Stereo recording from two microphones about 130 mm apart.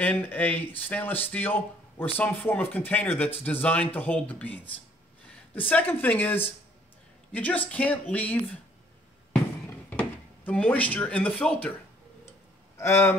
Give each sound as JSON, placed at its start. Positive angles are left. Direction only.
{"t": 0.0, "sound": "speech", "side_deg": 15}
{"t": 9.7, "sound": "speech", "side_deg": 15}
{"t": 12.3, "sound": "a sound", "side_deg": 20}